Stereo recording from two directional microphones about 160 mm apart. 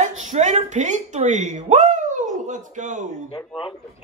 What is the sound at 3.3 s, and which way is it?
Speech, 30° left (ahead or behind).